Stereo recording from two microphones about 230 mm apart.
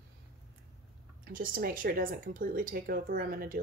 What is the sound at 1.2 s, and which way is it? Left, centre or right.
Speech, right.